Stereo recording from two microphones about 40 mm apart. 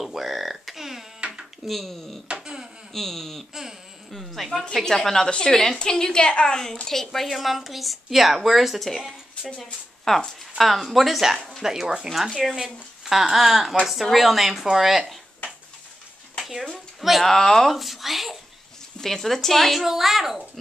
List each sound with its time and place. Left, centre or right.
0.0 s a sound: centre
1.7 s a woman's voice: centre
2.4 s a sound: centre
2.9 s a woman's voice: centre
4.8 s a woman's voice: centre
7.2 s a woman's voice: centre
10.0 s a woman's voice: centre
17.2 s speech: centre
17.6 s speech: centre
18.9 s a woman's voice: centre